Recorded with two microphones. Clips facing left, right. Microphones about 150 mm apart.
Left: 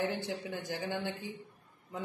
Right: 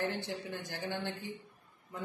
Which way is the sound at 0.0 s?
15° left (ahead or behind).